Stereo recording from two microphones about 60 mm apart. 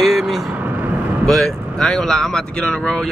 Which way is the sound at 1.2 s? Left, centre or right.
Centre.